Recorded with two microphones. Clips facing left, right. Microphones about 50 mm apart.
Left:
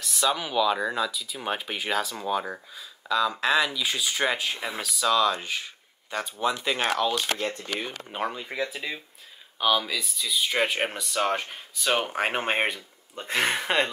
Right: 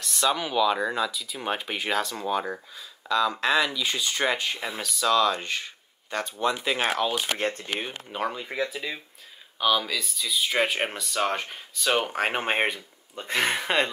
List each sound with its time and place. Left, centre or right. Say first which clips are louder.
0.0 s speech: right 1 dB; centre
7.3 s speech: right 2 dB; right
8.1 s speech: right 1 dB; centre